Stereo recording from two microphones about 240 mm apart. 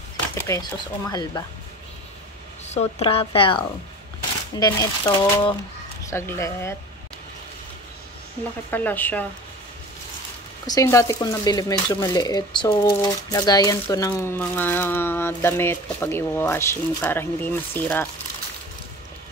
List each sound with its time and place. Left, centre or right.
0.5 s speech: centre
2.7 s a woman's voice: left
8.6 s speech: centre
10.7 s speech: centre